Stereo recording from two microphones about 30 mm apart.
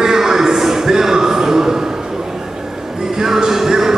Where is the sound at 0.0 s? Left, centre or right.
Centre.